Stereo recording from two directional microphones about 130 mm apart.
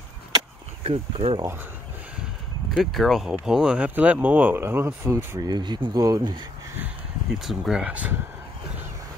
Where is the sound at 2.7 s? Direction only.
Centre (ahead or behind); by 5.3 s 20° right (ahead or behind).